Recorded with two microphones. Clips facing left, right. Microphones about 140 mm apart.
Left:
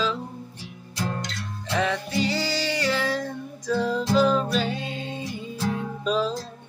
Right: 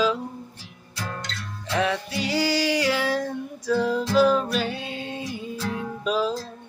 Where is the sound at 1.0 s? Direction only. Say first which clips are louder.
Left 3 dB; 20° left (ahead or behind).